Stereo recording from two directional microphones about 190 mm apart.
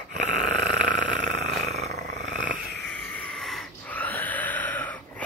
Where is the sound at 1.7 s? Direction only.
35° right (ahead or behind).